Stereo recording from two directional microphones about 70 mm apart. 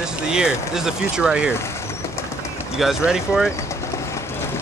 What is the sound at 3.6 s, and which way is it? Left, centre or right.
Bird, left.